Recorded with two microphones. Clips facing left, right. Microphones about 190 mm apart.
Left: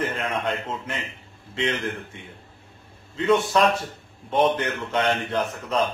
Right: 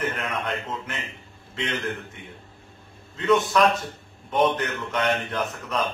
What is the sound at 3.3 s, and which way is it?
A man's voice, 30° left (ahead or behind).